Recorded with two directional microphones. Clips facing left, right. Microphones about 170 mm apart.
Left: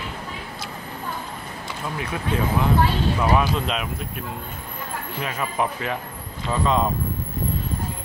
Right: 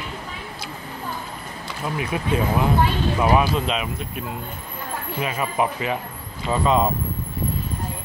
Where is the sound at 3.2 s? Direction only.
5° right (ahead or behind).